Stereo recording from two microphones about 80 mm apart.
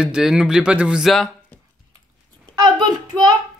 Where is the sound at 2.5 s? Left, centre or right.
Right.